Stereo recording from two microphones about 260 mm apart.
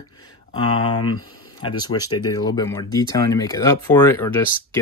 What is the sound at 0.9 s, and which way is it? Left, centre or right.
Speech, left.